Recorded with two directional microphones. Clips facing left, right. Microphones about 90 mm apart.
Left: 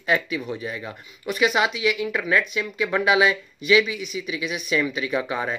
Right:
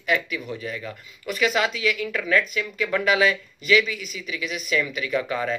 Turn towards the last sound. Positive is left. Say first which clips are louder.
# even
turn(degrees=20)  # may be behind; listen again after turning